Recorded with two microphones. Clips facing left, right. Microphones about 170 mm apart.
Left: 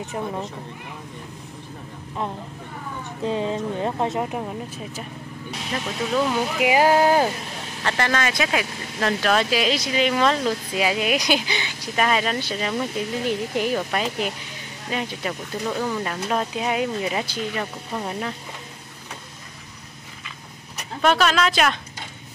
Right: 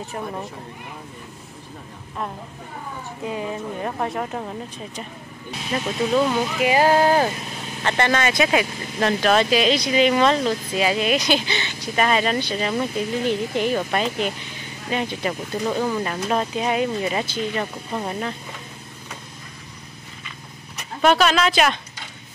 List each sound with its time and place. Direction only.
3.3 s speech: 25° left (ahead or behind)
4.4 s speech: 5° left (ahead or behind)
6.1 s speech: 5° right (ahead or behind)
6.6 s speech: 10° left (ahead or behind)
8.0 s speech: centre (ahead or behind)
21.0 s speech: 5° right (ahead or behind)